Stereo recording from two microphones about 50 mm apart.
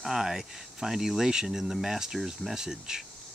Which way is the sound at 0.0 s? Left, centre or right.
Centre.